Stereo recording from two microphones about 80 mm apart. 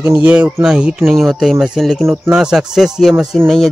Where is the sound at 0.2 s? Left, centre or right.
Centre.